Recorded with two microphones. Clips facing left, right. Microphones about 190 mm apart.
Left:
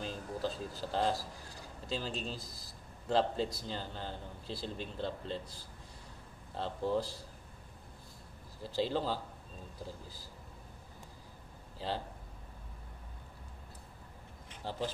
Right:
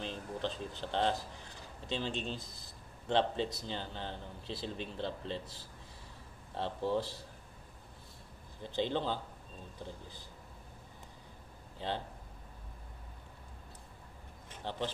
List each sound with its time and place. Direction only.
0.0 s a man's voice: 5° left (ahead or behind)
6.5 s a man's voice: centre (ahead or behind)
8.6 s a man's voice: 5° left (ahead or behind)
14.6 s speech: 10° left (ahead or behind)